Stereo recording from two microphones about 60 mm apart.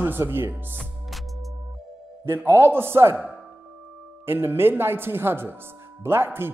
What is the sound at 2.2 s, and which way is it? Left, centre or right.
Speech, right.